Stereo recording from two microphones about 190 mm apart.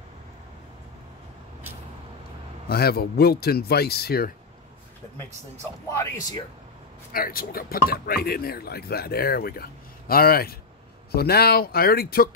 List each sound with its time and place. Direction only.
2.7 s speech: 55° left (ahead or behind)
5.9 s speech: 20° left (ahead or behind)
7.1 s speech: 50° left (ahead or behind)